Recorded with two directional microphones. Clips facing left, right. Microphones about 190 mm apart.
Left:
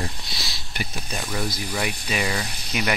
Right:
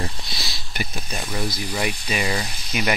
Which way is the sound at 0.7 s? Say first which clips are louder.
Right 1 dB; centre (ahead or behind).